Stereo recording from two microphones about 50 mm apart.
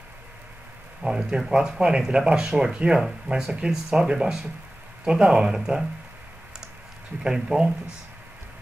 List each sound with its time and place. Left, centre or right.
1.0 s speech: centre
7.2 s speech: centre